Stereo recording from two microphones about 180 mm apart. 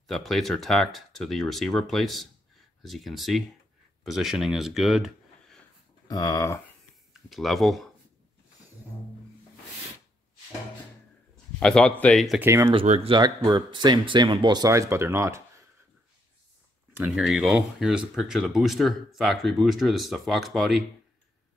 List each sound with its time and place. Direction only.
0.0 s speech: centre (ahead or behind)
6.0 s speech: 20° left (ahead or behind)
7.2 s speech: centre (ahead or behind)
11.6 s speech: 5° left (ahead or behind)
12.4 s speech: 15° right (ahead or behind)
12.7 s speech: 35° right (ahead or behind); by 15.4 s 15° right (ahead or behind)
17.0 s speech: 5° right (ahead or behind)